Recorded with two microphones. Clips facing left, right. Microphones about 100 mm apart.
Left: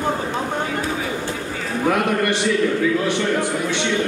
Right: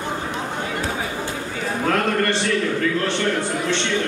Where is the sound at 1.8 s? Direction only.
10° left (ahead or behind).